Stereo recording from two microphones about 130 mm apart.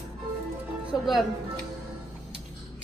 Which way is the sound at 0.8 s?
5° right (ahead or behind).